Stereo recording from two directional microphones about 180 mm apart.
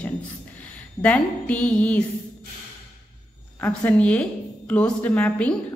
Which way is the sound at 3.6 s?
5° left (ahead or behind).